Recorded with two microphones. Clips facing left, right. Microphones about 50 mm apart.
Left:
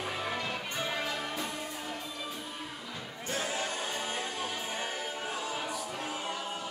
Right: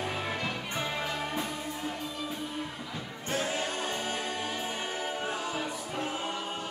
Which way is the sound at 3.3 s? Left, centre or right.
Right.